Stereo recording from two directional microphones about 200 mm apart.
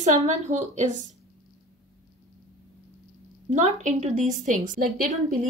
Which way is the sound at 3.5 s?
35° right (ahead or behind).